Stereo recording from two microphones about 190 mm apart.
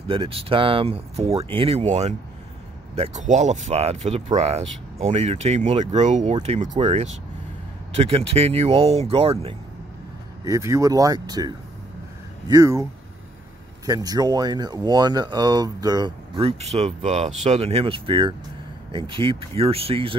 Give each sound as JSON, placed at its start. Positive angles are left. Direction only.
{"t": 0.1, "sound": "speech", "side_deg": -30}
{"t": 10.4, "sound": "speech", "side_deg": -15}
{"t": 13.8, "sound": "speech", "side_deg": -20}